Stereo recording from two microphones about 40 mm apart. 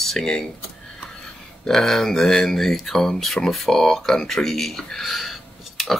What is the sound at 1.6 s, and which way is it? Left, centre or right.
Speech, centre.